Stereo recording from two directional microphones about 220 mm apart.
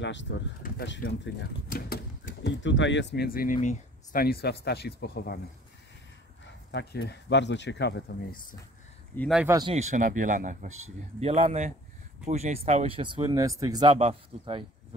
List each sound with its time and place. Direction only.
0.0 s speech: 55° left (ahead or behind)
6.7 s speech: 50° left (ahead or behind)
9.3 s speech: 5° right (ahead or behind)
9.6 s speech: 25° right (ahead or behind)